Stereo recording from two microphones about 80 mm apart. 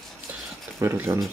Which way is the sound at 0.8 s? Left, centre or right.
Right.